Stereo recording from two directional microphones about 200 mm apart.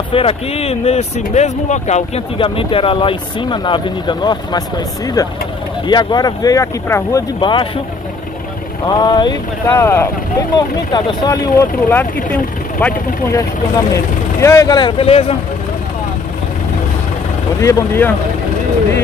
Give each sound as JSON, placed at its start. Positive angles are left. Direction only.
{"t": 0.1, "sound": "speech", "side_deg": 30}
{"t": 8.8, "sound": "speech", "side_deg": 20}
{"t": 17.6, "sound": "speech", "side_deg": 15}